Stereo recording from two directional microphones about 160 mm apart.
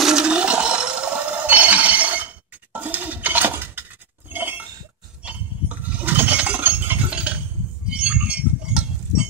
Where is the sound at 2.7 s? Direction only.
10° right (ahead or behind).